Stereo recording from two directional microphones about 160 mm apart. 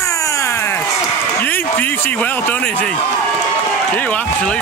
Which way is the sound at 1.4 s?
10° left (ahead or behind).